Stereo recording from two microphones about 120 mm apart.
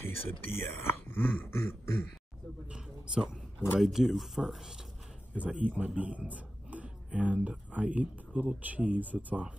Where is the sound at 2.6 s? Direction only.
5° right (ahead or behind).